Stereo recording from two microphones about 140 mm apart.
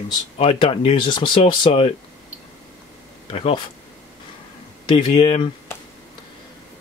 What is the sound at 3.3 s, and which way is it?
Speech, 45° left (ahead or behind).